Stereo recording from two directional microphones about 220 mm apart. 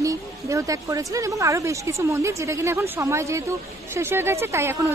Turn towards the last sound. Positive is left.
turn(degrees=-10)  # may be behind; listen again after turning